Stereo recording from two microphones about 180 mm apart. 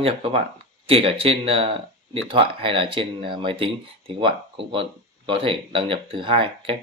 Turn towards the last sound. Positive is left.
turn(degrees=-30)  # may be behind; listen again after turning